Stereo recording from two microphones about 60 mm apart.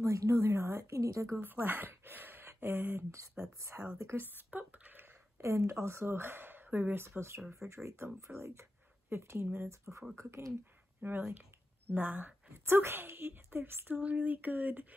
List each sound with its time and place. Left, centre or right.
0.0 s speech: right
0.5 s speech: right
1.4 s speech: right
3.5 s speech: right
4.4 s a sound: right
5.0 s a woman's voice: right
7.0 s speech: right
11.0 s a woman's voice: right